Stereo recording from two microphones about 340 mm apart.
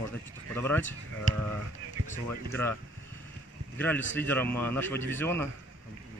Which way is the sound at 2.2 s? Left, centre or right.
Centre.